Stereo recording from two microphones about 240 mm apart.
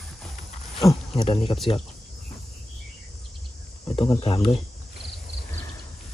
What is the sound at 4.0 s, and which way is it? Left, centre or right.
Speech, left.